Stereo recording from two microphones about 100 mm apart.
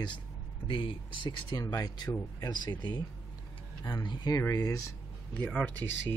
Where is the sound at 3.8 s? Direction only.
45° left (ahead or behind).